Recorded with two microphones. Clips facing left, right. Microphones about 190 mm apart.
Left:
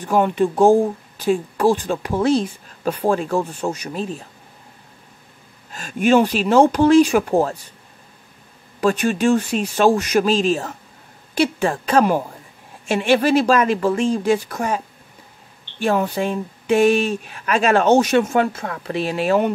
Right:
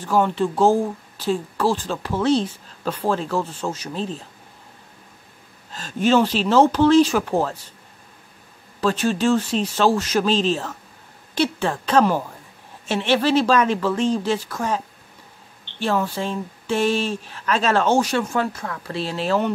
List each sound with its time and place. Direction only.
0.0 s speech: 15° left (ahead or behind)
5.7 s speech: 10° left (ahead or behind)
8.8 s speech: 15° left (ahead or behind)
15.8 s speech: 15° left (ahead or behind)